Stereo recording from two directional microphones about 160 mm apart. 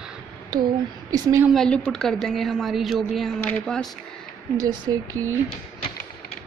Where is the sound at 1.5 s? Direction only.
5° left (ahead or behind).